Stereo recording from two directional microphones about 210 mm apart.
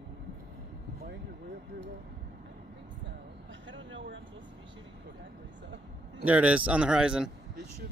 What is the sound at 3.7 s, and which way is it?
Speech, 60° right (ahead or behind).